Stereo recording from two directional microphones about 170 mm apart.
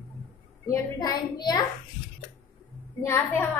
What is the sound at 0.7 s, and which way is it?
Speech, 20° left (ahead or behind).